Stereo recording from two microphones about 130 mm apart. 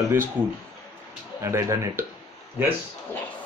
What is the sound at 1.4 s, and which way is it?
Speech, 20° right (ahead or behind).